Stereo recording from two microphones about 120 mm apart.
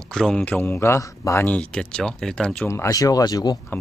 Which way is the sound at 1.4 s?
10° left (ahead or behind).